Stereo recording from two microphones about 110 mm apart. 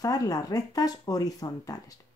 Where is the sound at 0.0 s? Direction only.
35° left (ahead or behind).